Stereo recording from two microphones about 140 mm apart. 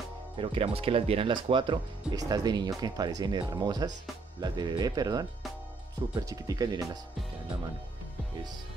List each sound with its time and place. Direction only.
0.4 s speech: 40° right (ahead or behind)